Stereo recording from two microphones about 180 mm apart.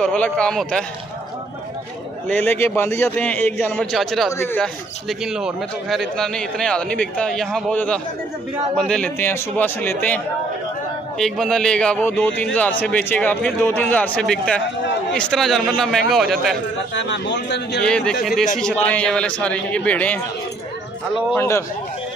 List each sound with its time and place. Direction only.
0.0 s a man's voice: 5° left (ahead or behind)
2.2 s a man's voice: 10° left (ahead or behind)
4.3 s a man's voice: 15° left (ahead or behind)
5.2 s a man's voice: 5° right (ahead or behind)
11.1 s a man's voice: centre (ahead or behind)
16.9 s a man's voice: 85° left
17.8 s a man's voice: 5° left (ahead or behind)
21.4 s a man's voice: 15° left (ahead or behind)